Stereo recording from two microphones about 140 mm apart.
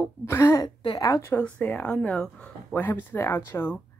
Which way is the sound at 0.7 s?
35° left (ahead or behind).